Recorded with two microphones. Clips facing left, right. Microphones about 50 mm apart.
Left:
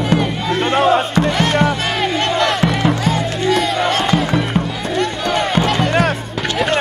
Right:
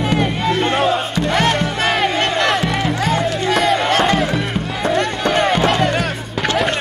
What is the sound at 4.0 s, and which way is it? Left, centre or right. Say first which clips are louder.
Music: right 1 dB; right.